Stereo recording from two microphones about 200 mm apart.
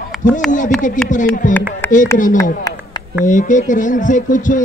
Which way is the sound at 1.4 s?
40° left (ahead or behind).